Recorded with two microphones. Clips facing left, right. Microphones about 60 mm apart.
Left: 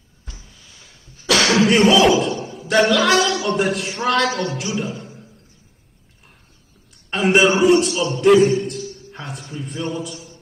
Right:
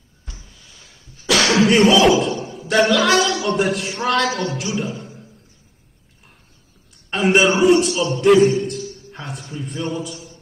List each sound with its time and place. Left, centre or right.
0.7 s throat clearing: centre
1.6 s a man's voice: centre
4.7 s music: centre
7.1 s a man's voice: centre